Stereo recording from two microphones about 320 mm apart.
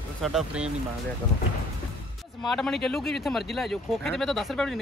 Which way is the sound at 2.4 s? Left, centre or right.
Centre.